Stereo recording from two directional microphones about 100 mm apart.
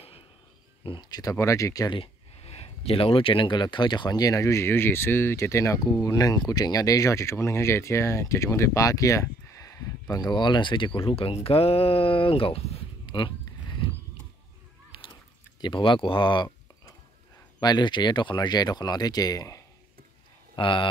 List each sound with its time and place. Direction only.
1.0 s speech: 40° left (ahead or behind)
1.9 s speech: 75° left (ahead or behind); by 10.9 s 55° left (ahead or behind)
11.0 s speech: 65° left (ahead or behind)
13.0 s a sound: 50° left (ahead or behind)
14.9 s a sound: 55° left (ahead or behind)
15.6 s speech: 55° left (ahead or behind)
17.6 s speech: 45° left (ahead or behind)
20.5 s speech: 55° left (ahead or behind)